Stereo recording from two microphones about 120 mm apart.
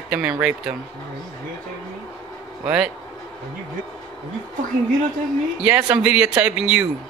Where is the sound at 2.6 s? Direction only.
10° right (ahead or behind).